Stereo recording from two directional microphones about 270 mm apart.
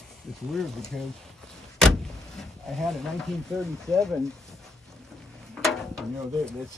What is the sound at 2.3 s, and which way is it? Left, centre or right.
Speech, centre.